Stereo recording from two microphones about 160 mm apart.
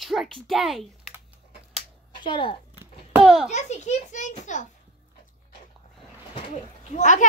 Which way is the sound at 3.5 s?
45° left (ahead or behind).